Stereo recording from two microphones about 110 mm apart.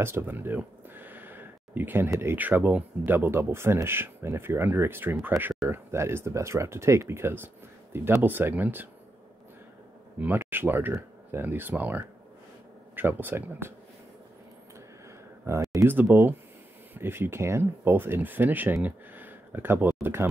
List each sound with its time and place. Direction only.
0.0 s speech: 20° right (ahead or behind)
10.1 s speech: 15° right (ahead or behind)
15.4 s speech: 30° right (ahead or behind)
15.9 s speech: 20° right (ahead or behind)